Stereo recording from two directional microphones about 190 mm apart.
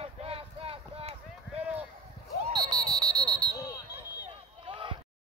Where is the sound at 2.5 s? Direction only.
Centre (ahead or behind).